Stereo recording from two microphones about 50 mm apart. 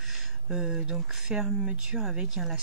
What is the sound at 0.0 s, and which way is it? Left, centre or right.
Speech, centre.